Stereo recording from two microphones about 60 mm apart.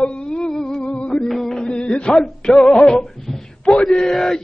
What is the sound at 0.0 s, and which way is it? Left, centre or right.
Music, centre.